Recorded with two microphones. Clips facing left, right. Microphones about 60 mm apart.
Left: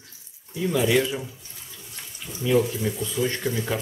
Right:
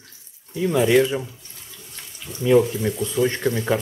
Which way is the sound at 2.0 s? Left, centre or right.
Centre.